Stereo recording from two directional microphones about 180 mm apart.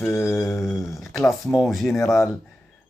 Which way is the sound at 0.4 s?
15° left (ahead or behind).